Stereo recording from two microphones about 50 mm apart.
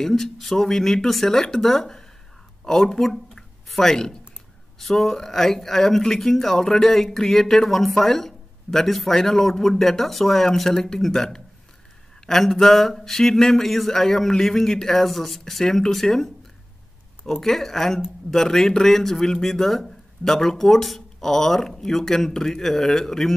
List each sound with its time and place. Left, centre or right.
0.0 s a man's voice: centre
17.3 s a man's voice: centre